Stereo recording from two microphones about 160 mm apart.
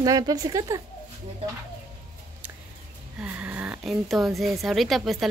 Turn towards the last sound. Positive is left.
turn(degrees=0)  # may be behind; listen again after turning